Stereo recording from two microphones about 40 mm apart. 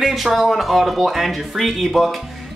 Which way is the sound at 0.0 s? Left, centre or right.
Centre.